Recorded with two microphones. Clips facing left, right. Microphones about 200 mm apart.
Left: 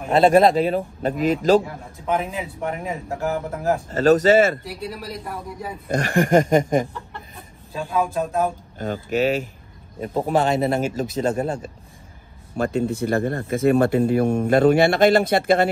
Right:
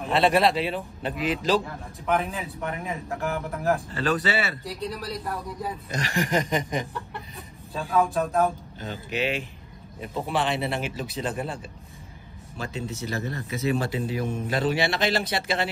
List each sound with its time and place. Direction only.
0.1 s speech: 45° left (ahead or behind)
1.6 s a man's voice: 15° left (ahead or behind)
2.4 s speech: 30° left (ahead or behind)
3.9 s speech: 45° left (ahead or behind)
4.9 s speech: centre (ahead or behind)
5.9 s speech: 55° left (ahead or behind)
7.9 s a man's voice: 15° left (ahead or behind)
8.7 s speech: 50° left (ahead or behind)